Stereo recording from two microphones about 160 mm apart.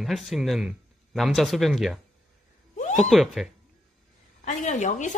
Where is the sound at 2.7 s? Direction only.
50° left (ahead or behind).